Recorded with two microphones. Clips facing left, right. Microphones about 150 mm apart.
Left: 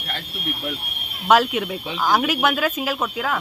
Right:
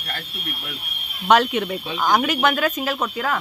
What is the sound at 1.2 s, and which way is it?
Speech, 5° left (ahead or behind).